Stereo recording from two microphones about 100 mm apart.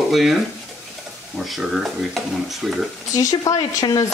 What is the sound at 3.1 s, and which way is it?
Speech, 35° left (ahead or behind).